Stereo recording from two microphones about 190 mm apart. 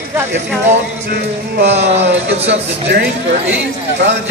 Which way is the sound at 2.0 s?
65° right (ahead or behind).